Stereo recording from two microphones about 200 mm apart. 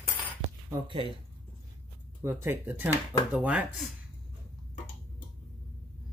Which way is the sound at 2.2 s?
10° right (ahead or behind).